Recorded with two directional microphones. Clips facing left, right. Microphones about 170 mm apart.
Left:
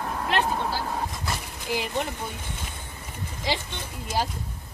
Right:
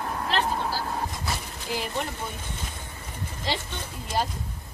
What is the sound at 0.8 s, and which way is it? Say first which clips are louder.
Vehicle: even; centre (ahead or behind).